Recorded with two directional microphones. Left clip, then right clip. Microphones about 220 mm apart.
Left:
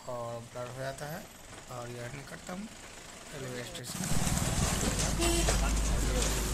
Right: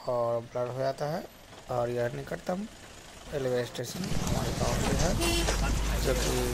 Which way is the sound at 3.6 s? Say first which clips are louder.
Right 8 dB; 35° right (ahead or behind).